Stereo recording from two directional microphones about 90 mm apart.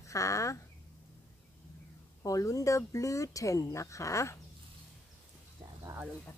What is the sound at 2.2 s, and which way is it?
Speech, 40° left (ahead or behind).